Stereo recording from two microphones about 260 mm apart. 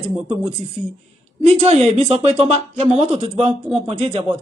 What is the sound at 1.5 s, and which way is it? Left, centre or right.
Mantra, right.